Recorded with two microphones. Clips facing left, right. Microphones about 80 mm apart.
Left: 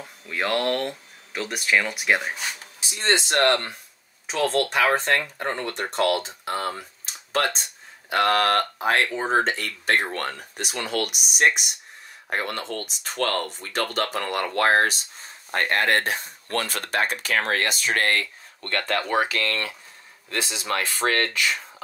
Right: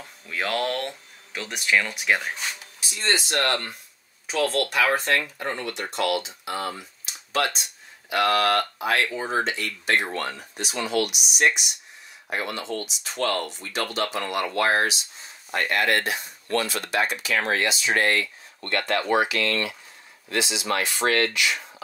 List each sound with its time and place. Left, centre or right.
0.0 s speech: centre
2.9 s speech: left
6.8 s a sound: left
8.1 s speech: left